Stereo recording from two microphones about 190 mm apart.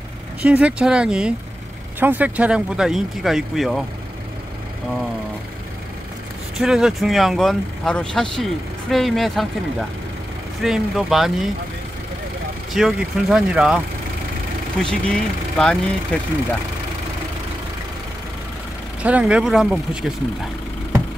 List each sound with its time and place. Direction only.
0.4 s speech: 5° right (ahead or behind)
6.6 s speech: 5° right (ahead or behind)
12.7 s speech: centre (ahead or behind)
19.0 s speech: 5° right (ahead or behind)